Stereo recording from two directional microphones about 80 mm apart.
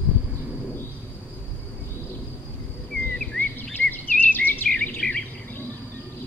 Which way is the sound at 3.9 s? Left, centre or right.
Left.